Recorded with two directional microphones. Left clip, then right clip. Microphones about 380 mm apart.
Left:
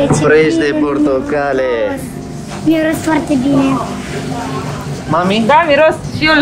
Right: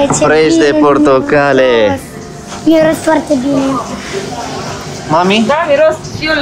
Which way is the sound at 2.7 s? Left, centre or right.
Centre.